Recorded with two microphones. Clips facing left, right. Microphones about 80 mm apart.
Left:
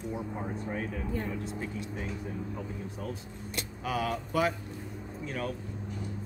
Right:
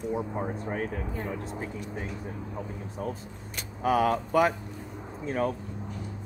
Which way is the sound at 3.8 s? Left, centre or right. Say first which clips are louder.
Right 8 dB; right.